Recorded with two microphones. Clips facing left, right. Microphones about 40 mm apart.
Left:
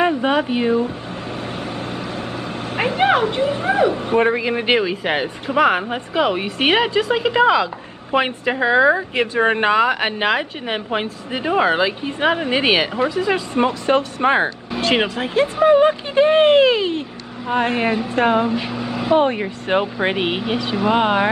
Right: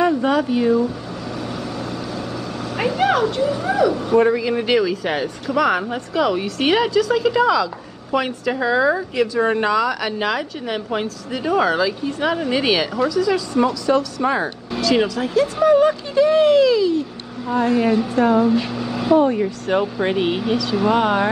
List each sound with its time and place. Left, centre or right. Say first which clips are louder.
0.0 s speech: even; left
2.8 s speech: left 1 dB; left
18.5 s speech: right 2 dB; centre
19.1 s speech: right 1 dB; left